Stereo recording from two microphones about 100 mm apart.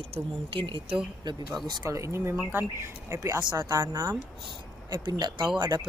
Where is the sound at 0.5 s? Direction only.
65° right (ahead or behind).